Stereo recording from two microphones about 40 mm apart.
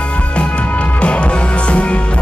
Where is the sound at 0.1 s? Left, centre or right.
Left.